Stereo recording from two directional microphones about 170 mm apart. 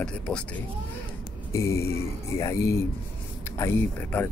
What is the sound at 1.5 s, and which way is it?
Speech, 15° left (ahead or behind).